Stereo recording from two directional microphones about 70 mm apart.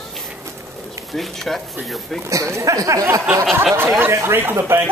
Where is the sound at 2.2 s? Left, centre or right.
Right.